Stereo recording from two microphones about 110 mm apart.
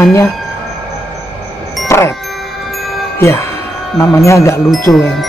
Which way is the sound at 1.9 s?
25° left (ahead or behind).